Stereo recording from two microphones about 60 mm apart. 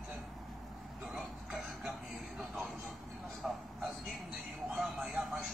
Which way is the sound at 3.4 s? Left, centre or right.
Centre.